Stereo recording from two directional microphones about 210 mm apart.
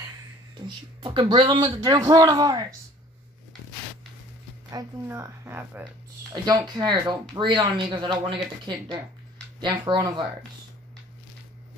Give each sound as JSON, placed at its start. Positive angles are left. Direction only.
{"t": 0.6, "sound": "speech", "side_deg": -25}
{"t": 4.6, "sound": "speech", "side_deg": -15}